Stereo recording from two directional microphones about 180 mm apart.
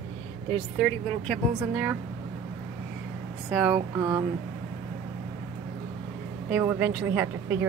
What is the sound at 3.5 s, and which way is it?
Speech, 5° right (ahead or behind).